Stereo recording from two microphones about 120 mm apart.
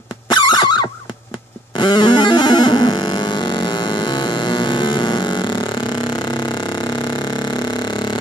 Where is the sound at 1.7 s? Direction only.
40° left (ahead or behind).